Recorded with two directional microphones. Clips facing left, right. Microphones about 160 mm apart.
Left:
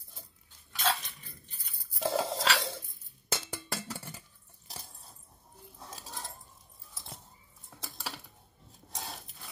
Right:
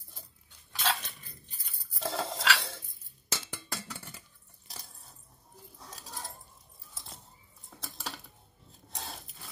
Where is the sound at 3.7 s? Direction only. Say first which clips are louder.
Left 3 dB; 20° left (ahead or behind).